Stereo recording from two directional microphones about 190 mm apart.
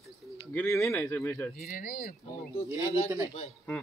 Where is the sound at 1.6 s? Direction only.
50° left (ahead or behind).